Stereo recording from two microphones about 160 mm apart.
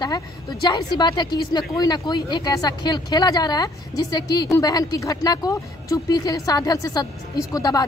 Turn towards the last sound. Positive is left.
turn(degrees=25)  # may be behind; listen again after turning